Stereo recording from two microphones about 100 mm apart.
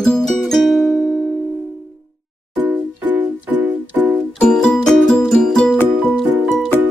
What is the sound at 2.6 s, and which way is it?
Music, 20° right (ahead or behind).